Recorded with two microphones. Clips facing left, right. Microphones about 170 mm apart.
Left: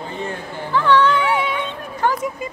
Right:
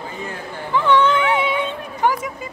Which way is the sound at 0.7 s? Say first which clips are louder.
Even; 20° right (ahead or behind).